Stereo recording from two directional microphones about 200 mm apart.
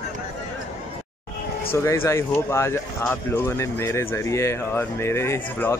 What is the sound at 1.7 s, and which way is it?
Speech, 15° left (ahead or behind).